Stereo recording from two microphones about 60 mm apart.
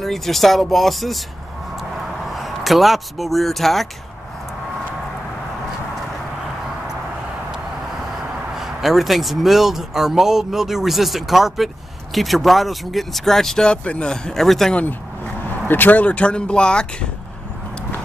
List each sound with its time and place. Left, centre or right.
0.0 s speech: centre
2.3 s speech: centre
8.5 s speech: centre
15.7 s speech: left; by 17.1 s centre